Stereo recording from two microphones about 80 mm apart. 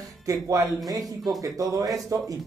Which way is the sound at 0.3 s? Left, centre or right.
Right.